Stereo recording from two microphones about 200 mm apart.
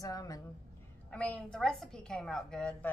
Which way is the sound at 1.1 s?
5° left (ahead or behind).